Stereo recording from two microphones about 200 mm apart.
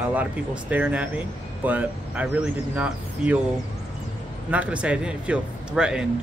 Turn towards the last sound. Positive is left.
turn(degrees=-5)  # may be behind; listen again after turning